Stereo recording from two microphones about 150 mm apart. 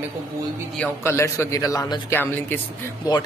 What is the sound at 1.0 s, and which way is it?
A man's voice, 20° left (ahead or behind).